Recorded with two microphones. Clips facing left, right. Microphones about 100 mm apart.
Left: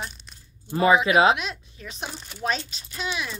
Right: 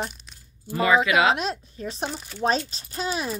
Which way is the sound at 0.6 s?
25° left (ahead or behind).